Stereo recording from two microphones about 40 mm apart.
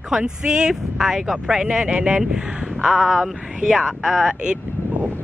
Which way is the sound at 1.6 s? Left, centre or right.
Right.